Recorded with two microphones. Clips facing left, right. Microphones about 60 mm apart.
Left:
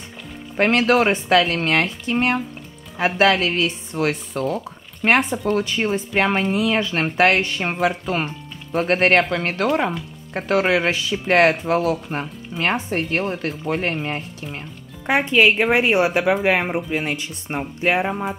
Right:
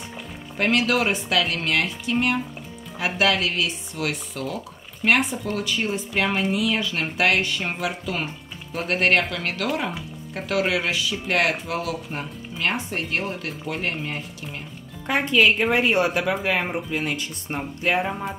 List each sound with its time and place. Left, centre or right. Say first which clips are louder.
0.6 s speech: left 5 dB; left
15.0 s speech: left 3 dB; left